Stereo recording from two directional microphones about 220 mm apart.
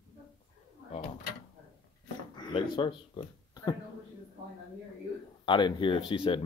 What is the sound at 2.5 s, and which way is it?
Speech, 25° left (ahead or behind).